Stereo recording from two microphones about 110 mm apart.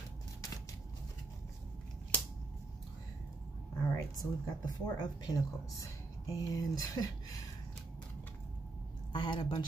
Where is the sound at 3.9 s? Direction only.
35° left (ahead or behind).